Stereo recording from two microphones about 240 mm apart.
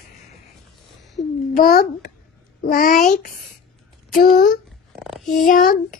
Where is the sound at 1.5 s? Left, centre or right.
Left.